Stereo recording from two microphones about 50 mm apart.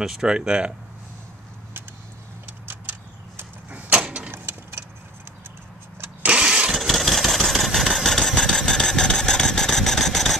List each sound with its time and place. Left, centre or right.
0.0 s speech: centre
2.7 s a sound: right
3.9 s vehicle: right
4.3 s vehicle: right
6.2 s engine starting: right
6.7 s engine: centre